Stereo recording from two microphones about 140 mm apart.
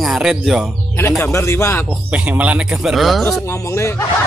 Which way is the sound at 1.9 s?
10° right (ahead or behind).